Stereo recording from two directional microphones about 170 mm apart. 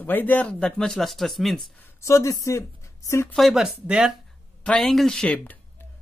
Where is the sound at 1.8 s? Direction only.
15° left (ahead or behind).